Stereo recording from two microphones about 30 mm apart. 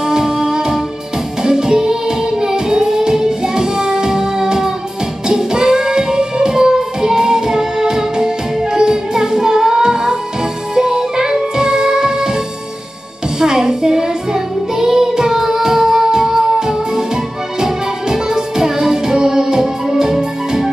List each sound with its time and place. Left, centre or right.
0.0 s music: right
13.4 s music: right